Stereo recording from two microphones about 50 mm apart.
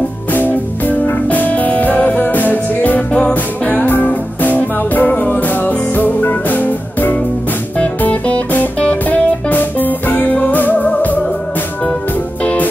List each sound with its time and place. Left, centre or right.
0.3 s music: left
3.1 s music: centre
3.6 s music: left
9.5 s music: left